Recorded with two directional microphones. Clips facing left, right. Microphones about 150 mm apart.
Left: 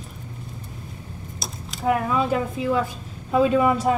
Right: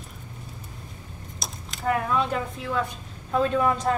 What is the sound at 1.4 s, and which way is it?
Speech, centre (ahead or behind).